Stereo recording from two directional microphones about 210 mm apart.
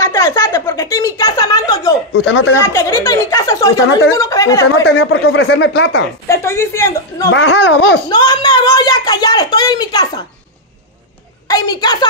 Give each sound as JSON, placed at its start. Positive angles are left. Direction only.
{"t": 0.0, "sound": "a sound", "side_deg": 15}
{"t": 2.2, "sound": "speech", "side_deg": 55}
{"t": 2.6, "sound": "speech", "side_deg": 10}
{"t": 4.8, "sound": "speech", "side_deg": 55}
{"t": 6.2, "sound": "a woman's voice", "side_deg": 10}
{"t": 7.2, "sound": "speech", "side_deg": 60}
{"t": 8.1, "sound": "a sound", "side_deg": 20}
{"t": 11.4, "sound": "a woman's voice", "side_deg": 20}